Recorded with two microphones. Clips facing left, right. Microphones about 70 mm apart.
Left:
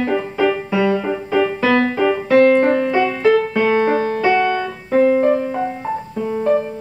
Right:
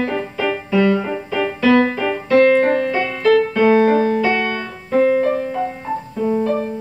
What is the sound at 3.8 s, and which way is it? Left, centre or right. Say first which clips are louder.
Music: right 2 dB; left.